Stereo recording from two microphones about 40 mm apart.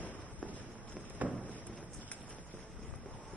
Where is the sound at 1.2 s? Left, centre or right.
Right.